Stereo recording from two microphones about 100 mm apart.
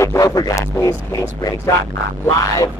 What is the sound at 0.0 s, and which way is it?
Music, 35° left (ahead or behind).